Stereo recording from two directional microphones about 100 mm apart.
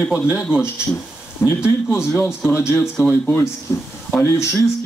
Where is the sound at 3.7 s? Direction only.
30° left (ahead or behind).